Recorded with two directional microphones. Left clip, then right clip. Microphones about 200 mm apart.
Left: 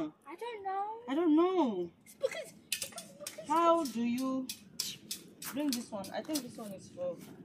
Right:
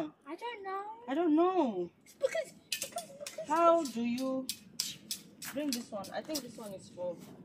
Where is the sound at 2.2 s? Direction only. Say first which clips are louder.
Right 3 dB; 15° right (ahead or behind).